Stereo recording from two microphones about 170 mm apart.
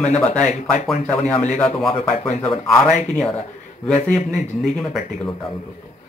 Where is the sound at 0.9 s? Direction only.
Centre (ahead or behind).